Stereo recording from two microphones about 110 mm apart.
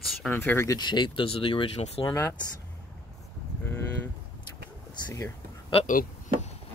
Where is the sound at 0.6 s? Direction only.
40° left (ahead or behind); by 2.0 s 55° left (ahead or behind).